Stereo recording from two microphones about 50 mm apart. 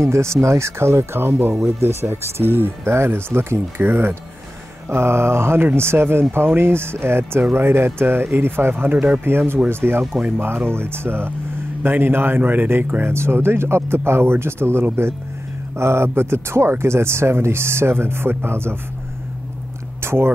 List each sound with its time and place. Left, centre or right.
0.0 s speech: right
8.9 s speech: right
9.2 s speech: right
13.0 s speech: right
20.0 s speech: right